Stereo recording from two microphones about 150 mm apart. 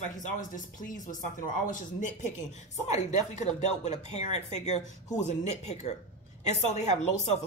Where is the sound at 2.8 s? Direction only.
50° left (ahead or behind).